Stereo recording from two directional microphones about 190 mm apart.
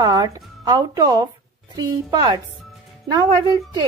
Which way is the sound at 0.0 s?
20° right (ahead or behind).